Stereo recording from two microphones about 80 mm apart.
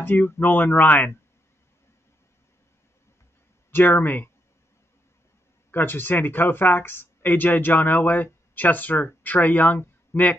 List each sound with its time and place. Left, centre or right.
0.0 s speech: left
3.7 s speech: left
5.7 s speech: left